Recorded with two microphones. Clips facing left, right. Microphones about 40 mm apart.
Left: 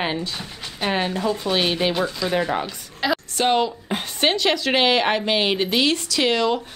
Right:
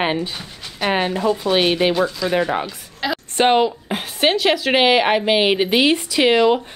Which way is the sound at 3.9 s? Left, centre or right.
Centre.